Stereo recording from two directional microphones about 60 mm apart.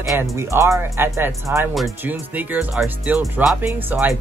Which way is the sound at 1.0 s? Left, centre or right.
Right.